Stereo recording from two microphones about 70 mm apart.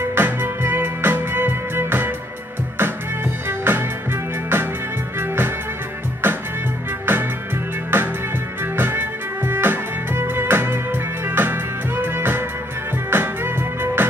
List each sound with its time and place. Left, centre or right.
0.0 s music: right
3.4 s music: right